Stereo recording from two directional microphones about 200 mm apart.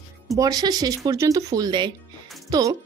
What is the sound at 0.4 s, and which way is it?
Speech, 20° right (ahead or behind).